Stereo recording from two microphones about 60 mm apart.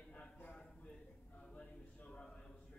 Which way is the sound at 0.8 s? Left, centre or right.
Centre.